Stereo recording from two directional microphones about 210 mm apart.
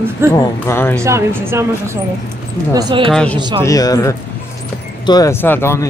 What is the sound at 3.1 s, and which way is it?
Speech, 5° left (ahead or behind).